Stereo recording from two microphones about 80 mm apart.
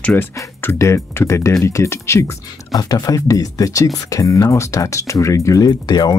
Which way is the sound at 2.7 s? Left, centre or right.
Left.